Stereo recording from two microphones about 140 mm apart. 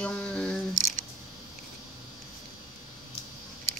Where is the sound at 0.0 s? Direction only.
10° left (ahead or behind).